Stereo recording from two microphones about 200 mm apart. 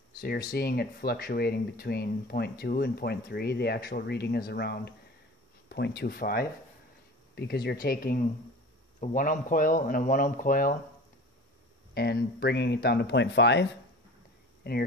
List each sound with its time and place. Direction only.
0.5 s speech: 50° left (ahead or behind)
11.9 s speech: 55° left (ahead or behind)